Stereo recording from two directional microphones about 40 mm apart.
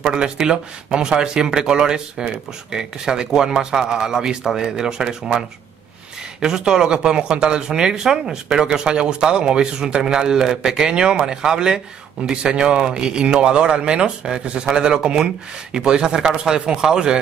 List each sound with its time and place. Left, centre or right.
0.0 s speech: centre
6.4 s speech: centre